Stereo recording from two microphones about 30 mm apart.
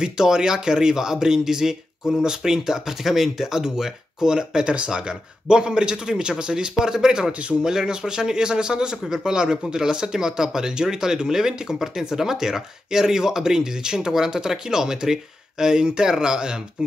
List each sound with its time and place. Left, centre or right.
0.0 s speech: right